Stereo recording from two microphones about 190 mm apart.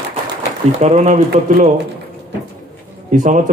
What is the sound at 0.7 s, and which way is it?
Speech, 35° right (ahead or behind).